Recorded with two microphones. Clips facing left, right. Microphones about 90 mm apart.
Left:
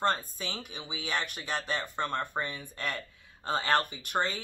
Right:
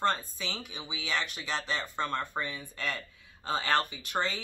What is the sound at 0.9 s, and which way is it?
Speech, 45° left (ahead or behind).